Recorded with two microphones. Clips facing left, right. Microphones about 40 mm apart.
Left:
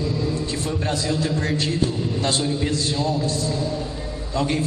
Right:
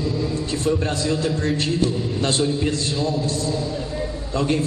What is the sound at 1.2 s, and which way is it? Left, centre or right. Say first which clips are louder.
Speech: right 1 dB; left.